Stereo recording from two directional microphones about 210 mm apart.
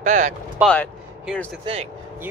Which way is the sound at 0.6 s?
5° right (ahead or behind).